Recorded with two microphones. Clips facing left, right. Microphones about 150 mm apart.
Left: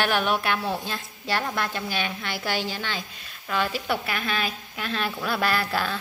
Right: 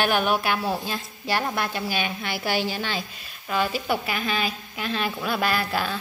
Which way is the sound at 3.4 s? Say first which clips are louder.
Right 2 dB; 5° right (ahead or behind).